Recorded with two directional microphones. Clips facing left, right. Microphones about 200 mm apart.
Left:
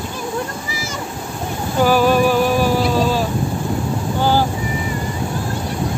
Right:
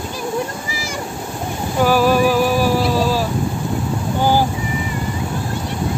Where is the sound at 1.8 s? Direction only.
Centre (ahead or behind).